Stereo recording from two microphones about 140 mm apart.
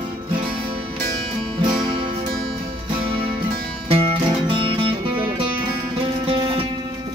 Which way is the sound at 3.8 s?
40° right (ahead or behind).